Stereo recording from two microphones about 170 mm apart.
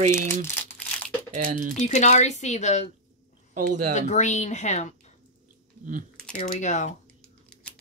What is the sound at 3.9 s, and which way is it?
Speech, 45° left (ahead or behind).